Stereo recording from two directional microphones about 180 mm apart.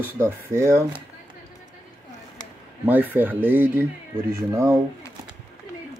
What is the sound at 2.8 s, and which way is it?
Speech, 10° right (ahead or behind).